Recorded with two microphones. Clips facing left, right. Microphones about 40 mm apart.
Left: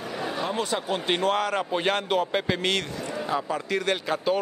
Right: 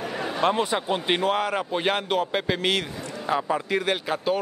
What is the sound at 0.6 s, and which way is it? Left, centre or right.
A man's voice, centre.